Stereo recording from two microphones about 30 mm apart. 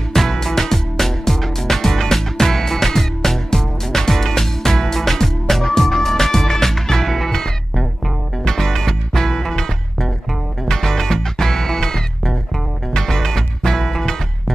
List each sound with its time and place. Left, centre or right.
0.1 s music: centre
8.5 s music: centre